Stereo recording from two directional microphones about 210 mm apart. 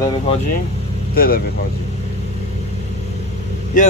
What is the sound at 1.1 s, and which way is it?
Speech, 45° left (ahead or behind).